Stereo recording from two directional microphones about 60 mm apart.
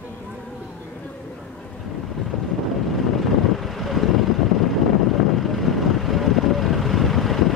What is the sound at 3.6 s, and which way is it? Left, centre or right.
Vehicle, centre.